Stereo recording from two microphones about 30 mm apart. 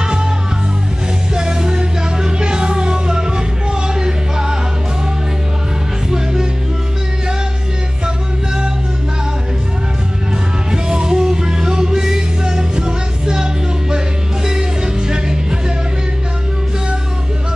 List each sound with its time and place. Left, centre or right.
0.0 s music: right
1.3 s music: right
6.0 s music: centre
10.7 s music: right